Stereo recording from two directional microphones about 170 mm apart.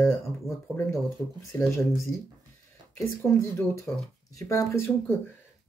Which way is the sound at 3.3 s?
15° left (ahead or behind).